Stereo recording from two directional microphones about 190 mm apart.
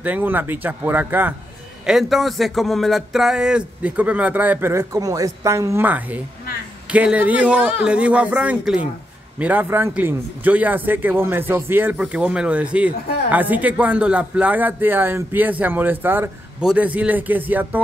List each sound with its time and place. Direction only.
0.0 s a man's voice: 10° right (ahead or behind)